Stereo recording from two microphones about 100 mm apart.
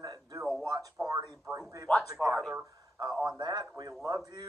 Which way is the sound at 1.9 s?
15° left (ahead or behind).